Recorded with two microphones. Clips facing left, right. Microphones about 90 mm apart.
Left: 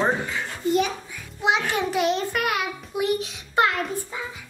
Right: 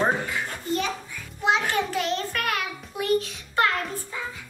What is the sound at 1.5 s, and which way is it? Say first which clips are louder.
A child's voice: left 1 dB; 15° left (ahead or behind).